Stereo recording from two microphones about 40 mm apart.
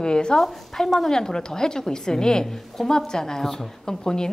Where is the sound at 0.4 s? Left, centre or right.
Centre.